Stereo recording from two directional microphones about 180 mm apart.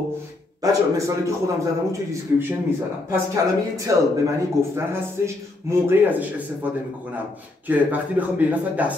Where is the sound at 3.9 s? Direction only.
20° right (ahead or behind).